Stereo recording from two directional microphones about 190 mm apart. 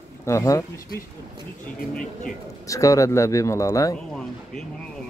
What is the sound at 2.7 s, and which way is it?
A man's voice, 15° left (ahead or behind).